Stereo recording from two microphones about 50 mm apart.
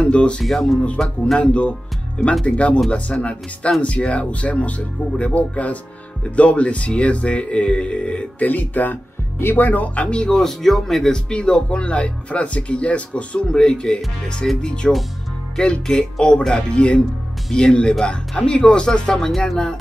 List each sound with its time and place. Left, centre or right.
0.0 s speech: left
0.4 s speech: centre
0.8 s speech: centre
8.5 s speech: left
10.0 s speech: centre